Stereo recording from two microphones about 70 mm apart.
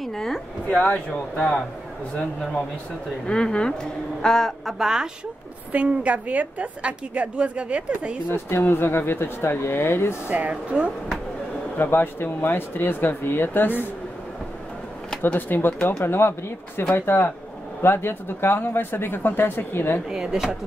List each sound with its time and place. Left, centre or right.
0.0 s a sound: centre
0.8 s speech: left
3.3 s speech: centre
4.7 s speech: centre
5.7 s a woman's voice: right
8.3 s speech: left
10.2 s a woman's voice: right
11.7 s speech: left
15.3 s speech: left
20.1 s speech: centre